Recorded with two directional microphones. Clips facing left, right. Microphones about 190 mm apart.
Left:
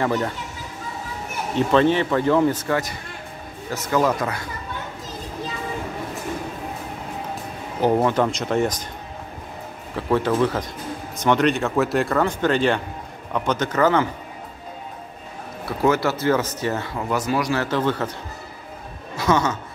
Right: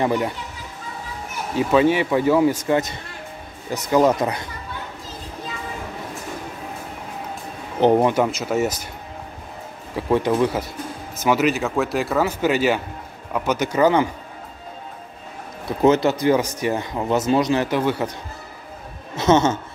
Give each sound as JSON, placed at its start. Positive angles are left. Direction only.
{"t": 0.0, "sound": "speech", "side_deg": -15}
{"t": 1.5, "sound": "speech", "side_deg": -10}
{"t": 7.8, "sound": "speech", "side_deg": -20}
{"t": 9.9, "sound": "speech", "side_deg": -15}
{"t": 15.6, "sound": "speech", "side_deg": -20}
{"t": 19.1, "sound": "speech", "side_deg": -25}